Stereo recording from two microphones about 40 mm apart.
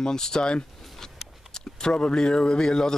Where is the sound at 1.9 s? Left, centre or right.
Left.